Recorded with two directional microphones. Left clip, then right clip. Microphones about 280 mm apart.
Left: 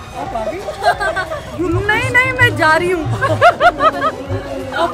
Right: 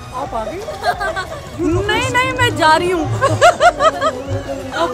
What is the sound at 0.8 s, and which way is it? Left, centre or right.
Speech, left.